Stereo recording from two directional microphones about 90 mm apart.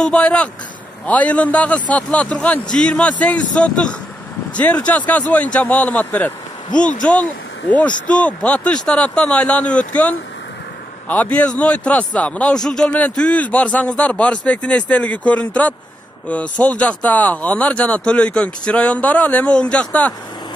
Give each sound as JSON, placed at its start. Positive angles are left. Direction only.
{"t": 0.0, "sound": "speech", "side_deg": 10}